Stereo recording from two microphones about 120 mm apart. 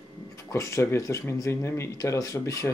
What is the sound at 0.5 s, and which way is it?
Speech, 25° left (ahead or behind).